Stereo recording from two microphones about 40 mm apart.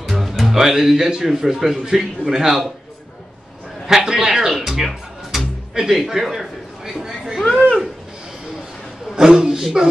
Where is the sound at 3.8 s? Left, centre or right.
Centre.